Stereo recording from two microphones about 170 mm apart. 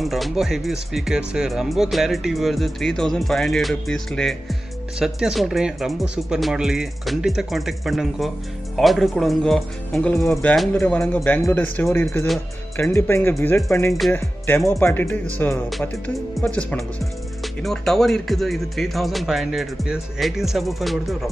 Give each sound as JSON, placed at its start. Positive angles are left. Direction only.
{"t": 0.0, "sound": "speech", "side_deg": 0}